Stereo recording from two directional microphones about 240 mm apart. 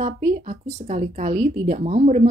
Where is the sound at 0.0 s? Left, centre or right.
Right.